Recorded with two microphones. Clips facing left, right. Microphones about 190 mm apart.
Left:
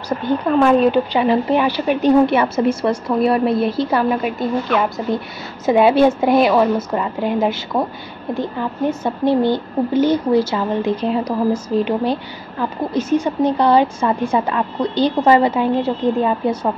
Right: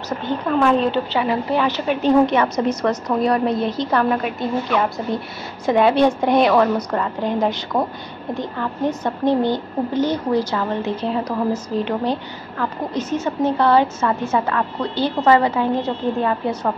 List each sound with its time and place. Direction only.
0.2 s a woman's voice: 10° left (ahead or behind)
9.3 s speech: 15° right (ahead or behind)
10.3 s a woman's voice: 10° left (ahead or behind)